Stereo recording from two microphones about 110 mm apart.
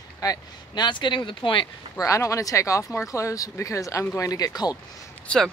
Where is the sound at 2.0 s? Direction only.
30° left (ahead or behind).